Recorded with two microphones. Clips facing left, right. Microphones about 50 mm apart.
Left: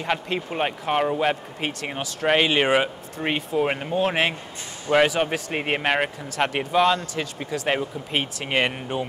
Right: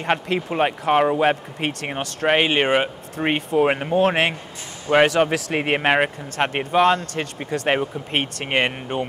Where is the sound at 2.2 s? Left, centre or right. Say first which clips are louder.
Right 1 dB; right.